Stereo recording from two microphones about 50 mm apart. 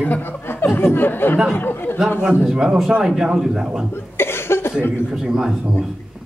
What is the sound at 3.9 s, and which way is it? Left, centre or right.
Cough, left.